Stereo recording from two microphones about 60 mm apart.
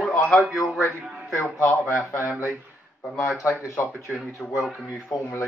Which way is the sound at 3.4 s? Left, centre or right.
Left.